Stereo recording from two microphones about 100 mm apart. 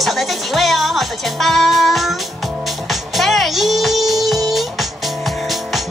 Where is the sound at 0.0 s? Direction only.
Centre (ahead or behind).